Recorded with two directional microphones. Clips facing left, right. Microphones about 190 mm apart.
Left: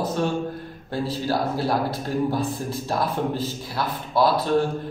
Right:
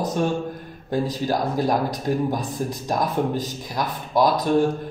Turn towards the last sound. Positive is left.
turn(degrees=-15)  # may be behind; listen again after turning